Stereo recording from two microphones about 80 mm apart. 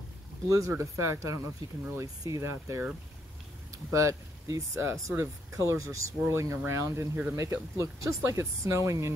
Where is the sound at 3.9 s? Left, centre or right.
Right.